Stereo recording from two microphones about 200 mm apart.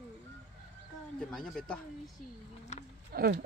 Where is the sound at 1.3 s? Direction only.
Centre (ahead or behind).